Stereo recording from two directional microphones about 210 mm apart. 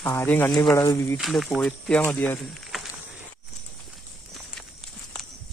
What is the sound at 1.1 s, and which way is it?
Speech, centre (ahead or behind).